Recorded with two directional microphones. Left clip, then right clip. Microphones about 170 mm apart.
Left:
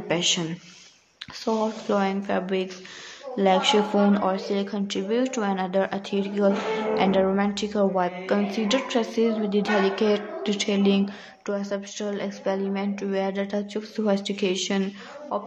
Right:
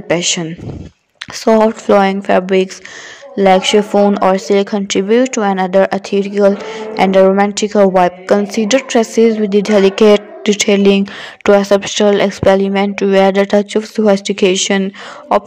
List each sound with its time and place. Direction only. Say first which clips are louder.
0.1 s a woman's voice: right 9 dB; 40° right (ahead or behind)